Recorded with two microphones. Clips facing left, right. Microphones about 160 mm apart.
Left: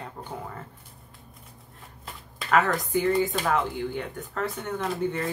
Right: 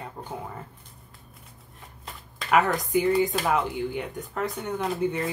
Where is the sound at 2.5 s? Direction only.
15° right (ahead or behind).